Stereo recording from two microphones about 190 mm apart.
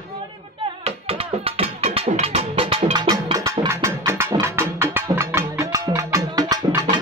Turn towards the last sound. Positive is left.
turn(degrees=-20)  # may be behind; listen again after turning